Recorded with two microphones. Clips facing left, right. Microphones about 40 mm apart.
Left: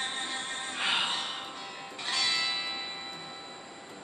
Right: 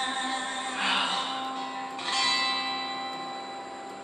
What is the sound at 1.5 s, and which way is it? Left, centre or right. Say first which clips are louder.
Music: right 7 dB; right.